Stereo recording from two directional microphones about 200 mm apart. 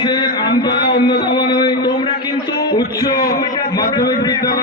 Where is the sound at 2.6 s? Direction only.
20° left (ahead or behind).